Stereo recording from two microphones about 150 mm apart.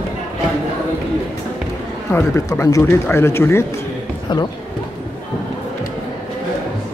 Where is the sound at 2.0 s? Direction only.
15° left (ahead or behind).